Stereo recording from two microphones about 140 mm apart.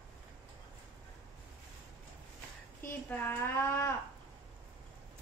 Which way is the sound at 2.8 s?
15° left (ahead or behind).